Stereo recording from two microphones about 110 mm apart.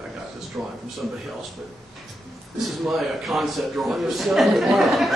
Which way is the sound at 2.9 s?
Centre (ahead or behind).